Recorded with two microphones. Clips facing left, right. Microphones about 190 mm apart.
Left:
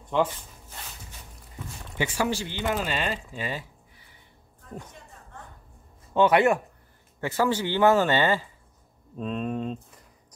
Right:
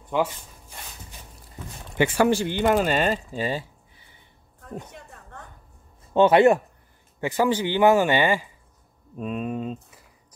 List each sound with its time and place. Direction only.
0.1 s speech: 5° right (ahead or behind)
2.0 s speech: 55° right (ahead or behind); by 4.2 s 25° right (ahead or behind)
6.1 s speech: 25° right (ahead or behind)
7.2 s speech: 15° right (ahead or behind)